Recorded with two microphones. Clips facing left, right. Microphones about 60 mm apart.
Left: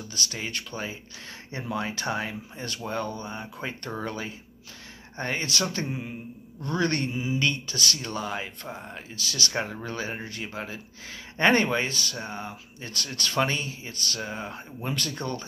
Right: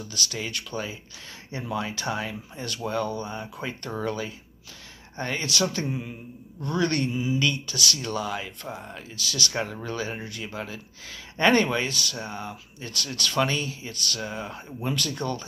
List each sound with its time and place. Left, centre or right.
0.1 s speech: left